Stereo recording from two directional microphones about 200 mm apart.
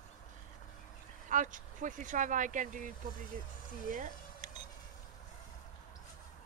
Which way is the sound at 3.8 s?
40° right (ahead or behind).